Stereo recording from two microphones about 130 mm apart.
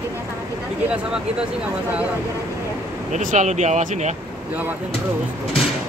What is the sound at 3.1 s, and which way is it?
Speech, 80° right.